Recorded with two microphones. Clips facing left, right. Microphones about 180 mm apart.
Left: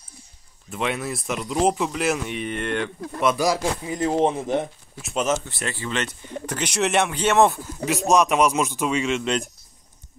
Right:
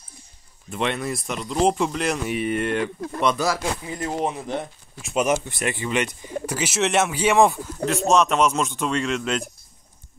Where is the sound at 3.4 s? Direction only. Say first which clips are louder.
Left 2 dB; 20° left (ahead or behind).